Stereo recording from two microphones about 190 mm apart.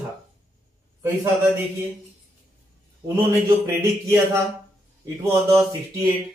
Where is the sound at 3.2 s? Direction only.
15° right (ahead or behind).